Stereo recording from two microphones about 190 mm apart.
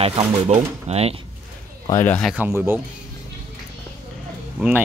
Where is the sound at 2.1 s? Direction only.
5° left (ahead or behind).